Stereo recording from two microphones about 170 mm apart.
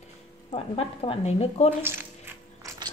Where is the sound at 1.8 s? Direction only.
15° right (ahead or behind).